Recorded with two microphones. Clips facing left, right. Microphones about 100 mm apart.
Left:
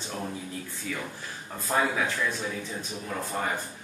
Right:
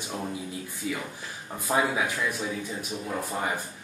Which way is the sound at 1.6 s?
10° right (ahead or behind).